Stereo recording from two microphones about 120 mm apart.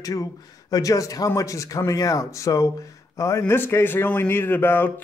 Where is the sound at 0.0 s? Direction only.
30° left (ahead or behind).